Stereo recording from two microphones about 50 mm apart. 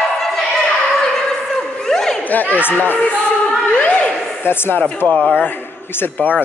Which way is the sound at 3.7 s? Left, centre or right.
Left.